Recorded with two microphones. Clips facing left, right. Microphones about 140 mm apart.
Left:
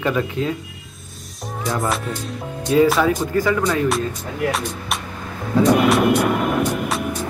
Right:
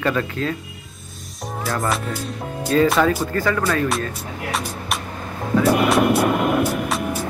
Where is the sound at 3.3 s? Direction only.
10° left (ahead or behind).